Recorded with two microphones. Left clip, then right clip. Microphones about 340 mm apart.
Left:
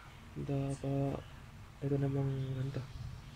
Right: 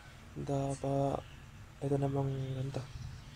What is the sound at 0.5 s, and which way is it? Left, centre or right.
Speech, right.